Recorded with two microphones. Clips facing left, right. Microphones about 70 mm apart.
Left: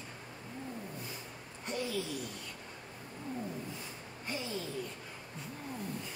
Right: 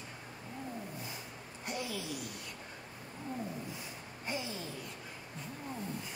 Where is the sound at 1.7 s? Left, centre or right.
Left.